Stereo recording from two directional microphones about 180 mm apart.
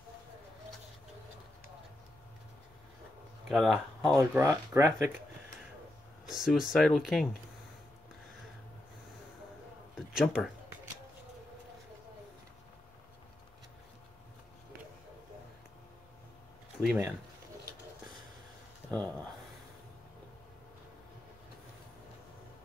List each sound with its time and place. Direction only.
3.4 s speech: centre (ahead or behind)
4.4 s speech: 15° right (ahead or behind)
6.2 s speech: centre (ahead or behind)
9.9 s a sound: 5° right (ahead or behind)
16.8 s speech: 10° right (ahead or behind)
18.9 s speech: 5° left (ahead or behind)